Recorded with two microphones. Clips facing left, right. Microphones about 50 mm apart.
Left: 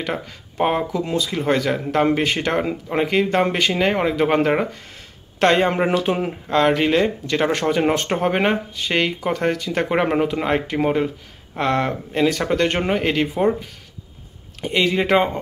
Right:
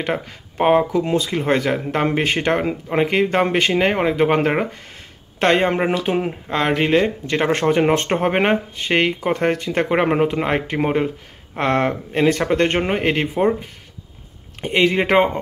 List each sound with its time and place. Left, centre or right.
0.1 s speech: centre
2.2 s speech: right
2.5 s speech: centre
7.9 s speech: right
9.8 s speech: centre
14.6 s speech: right